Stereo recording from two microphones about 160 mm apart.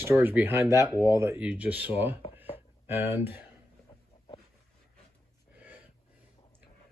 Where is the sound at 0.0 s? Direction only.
15° right (ahead or behind).